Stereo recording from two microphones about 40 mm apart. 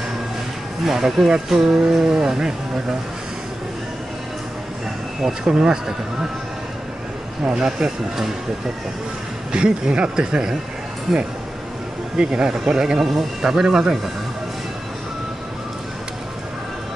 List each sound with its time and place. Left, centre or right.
0.8 s speech: centre
5.2 s speech: centre
7.5 s speech: centre
9.5 s speech: right
12.2 s speech: right
13.0 s speech: centre